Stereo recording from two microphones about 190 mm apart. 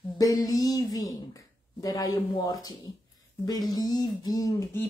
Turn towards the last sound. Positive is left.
turn(degrees=15)  # may be behind; listen again after turning